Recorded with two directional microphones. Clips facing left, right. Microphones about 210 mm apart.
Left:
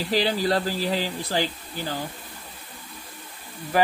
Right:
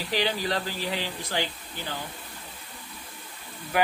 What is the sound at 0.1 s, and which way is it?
Speech, 35° left (ahead or behind).